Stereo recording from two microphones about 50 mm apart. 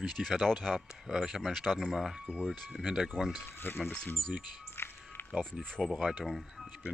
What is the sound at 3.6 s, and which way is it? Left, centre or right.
Speech, left.